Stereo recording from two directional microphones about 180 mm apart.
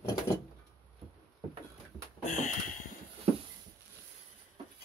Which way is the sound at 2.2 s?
45° left (ahead or behind).